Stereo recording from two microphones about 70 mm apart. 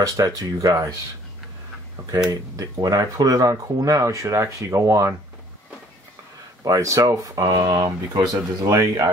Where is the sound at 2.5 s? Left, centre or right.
Right.